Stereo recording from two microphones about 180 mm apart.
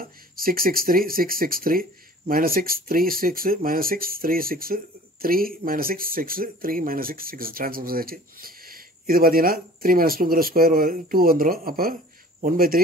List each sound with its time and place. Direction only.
0.0 s speech: 55° right (ahead or behind)